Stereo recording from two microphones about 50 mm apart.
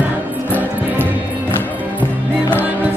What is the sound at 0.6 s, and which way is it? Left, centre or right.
Music, right.